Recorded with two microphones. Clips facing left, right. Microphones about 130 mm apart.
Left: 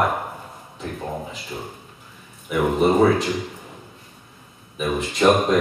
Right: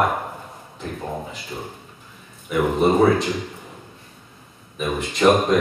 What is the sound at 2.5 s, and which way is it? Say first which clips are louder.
Speech: even; centre (ahead or behind).